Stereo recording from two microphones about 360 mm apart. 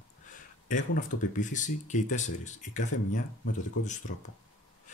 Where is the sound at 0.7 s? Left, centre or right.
Left.